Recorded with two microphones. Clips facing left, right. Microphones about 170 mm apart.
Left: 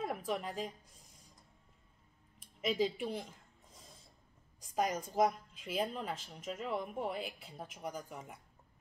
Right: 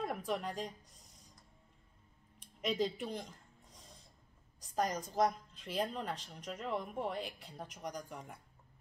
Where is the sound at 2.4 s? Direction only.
5° left (ahead or behind).